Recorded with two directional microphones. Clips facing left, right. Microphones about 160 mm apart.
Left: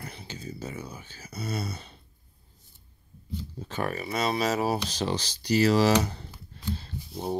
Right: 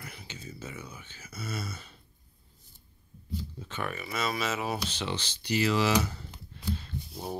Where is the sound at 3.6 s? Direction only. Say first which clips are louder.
Left 7 dB; 40° left (ahead or behind).